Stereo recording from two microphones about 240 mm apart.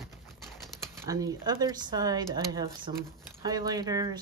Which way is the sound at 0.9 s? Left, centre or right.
Centre.